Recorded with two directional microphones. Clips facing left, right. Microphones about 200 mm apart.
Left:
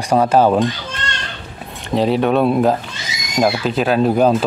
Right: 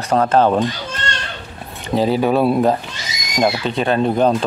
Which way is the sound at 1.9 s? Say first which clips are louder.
Even; centre (ahead or behind).